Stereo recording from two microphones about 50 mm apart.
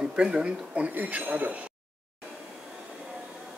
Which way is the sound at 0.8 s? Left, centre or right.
Right.